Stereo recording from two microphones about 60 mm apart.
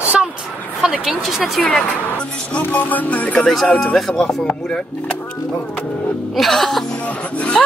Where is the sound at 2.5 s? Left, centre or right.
Left.